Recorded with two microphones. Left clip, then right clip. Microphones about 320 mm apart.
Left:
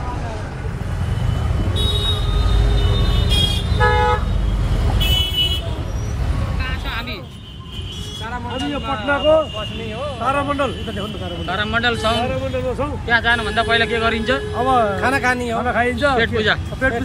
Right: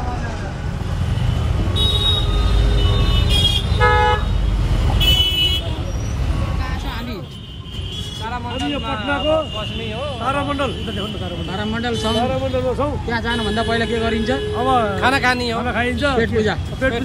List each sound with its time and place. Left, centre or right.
1.8 s vehicle: centre
8.5 s a sound: centre
10.2 s speech: centre
12.3 s a man's voice: right
13.1 s speech: centre